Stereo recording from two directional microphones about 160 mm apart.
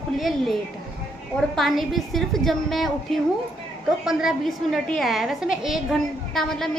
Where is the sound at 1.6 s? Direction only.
Centre (ahead or behind).